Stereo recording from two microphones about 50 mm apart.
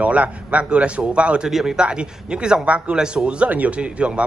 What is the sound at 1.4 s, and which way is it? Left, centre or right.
A man's voice, centre.